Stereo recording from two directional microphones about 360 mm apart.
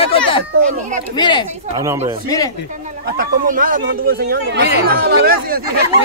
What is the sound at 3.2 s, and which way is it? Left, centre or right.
Speech, right.